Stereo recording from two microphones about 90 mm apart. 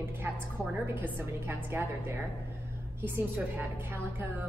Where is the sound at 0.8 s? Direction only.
25° right (ahead or behind).